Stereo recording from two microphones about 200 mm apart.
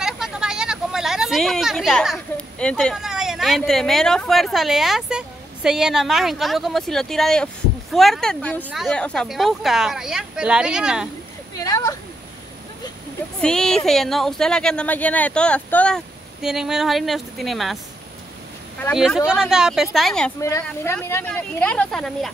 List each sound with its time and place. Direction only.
0.0 s speech: 5° right (ahead or behind)
11.5 s a sound: 15° left (ahead or behind)
13.4 s speech: 5° left (ahead or behind)
18.9 s speech: centre (ahead or behind)
20.3 s speech: 15° left (ahead or behind)